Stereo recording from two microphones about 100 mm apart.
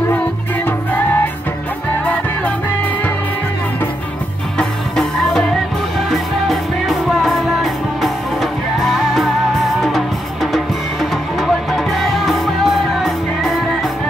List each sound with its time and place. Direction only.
0.7 s music: 20° left (ahead or behind)
4.6 s music: 5° left (ahead or behind)